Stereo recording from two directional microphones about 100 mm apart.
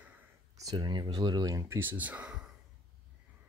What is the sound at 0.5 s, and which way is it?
Speech, 40° right (ahead or behind).